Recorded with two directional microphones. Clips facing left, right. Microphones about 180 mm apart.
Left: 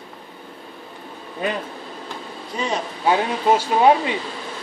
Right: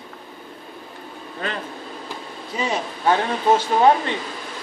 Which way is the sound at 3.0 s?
10° left (ahead or behind).